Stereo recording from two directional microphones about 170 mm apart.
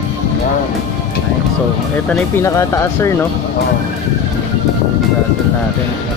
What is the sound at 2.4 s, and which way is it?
Speech, 15° left (ahead or behind).